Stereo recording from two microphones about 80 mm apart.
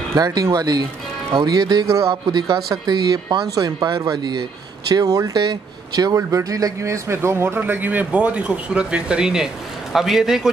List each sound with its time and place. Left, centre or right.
0.1 s speech: right
1.9 s speech: right
2.5 s speech: right
3.3 s a man's voice: right; by 10.5 s centre